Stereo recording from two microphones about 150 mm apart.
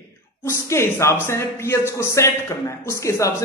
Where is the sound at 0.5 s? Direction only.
20° left (ahead or behind).